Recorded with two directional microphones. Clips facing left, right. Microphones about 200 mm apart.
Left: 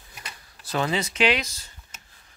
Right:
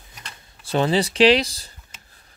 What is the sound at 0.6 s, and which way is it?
Speech, 30° right (ahead or behind).